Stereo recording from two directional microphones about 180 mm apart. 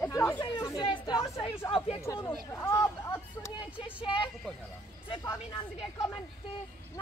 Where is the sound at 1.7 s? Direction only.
30° left (ahead or behind).